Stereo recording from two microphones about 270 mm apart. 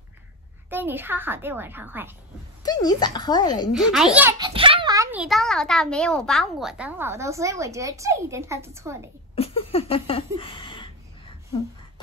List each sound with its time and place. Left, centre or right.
0.7 s a child's voice: centre
2.6 s speech: centre
3.7 s a child's voice: centre
9.3 s a sound: left